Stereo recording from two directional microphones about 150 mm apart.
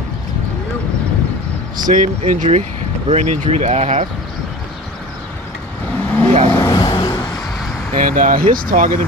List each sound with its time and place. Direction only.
1.9 s speech: 60° right (ahead or behind)
3.1 s speech: 45° right (ahead or behind)
5.9 s vehicle: 10° left (ahead or behind)
6.5 s vehicle: 25° left (ahead or behind)
7.9 s speech: 65° right (ahead or behind)